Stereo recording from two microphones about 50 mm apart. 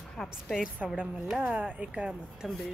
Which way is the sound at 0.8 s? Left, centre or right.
Centre.